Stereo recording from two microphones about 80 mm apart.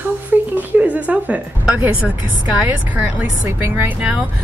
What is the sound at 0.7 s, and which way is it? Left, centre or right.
A woman's voice, centre.